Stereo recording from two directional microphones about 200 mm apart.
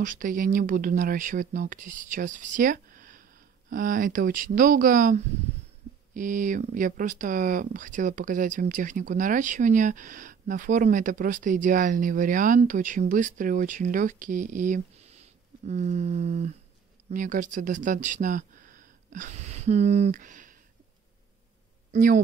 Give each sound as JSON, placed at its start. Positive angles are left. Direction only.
{"t": 0.0, "sound": "speech", "side_deg": -40}
{"t": 21.9, "sound": "speech", "side_deg": -45}